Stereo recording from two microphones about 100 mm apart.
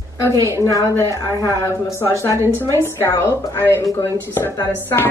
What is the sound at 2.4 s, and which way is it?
Speech, 25° right (ahead or behind).